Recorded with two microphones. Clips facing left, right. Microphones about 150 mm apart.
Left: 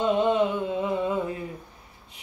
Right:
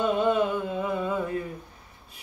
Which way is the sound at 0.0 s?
20° left (ahead or behind).